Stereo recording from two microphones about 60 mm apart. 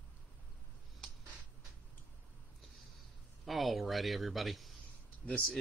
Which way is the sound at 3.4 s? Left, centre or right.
Centre.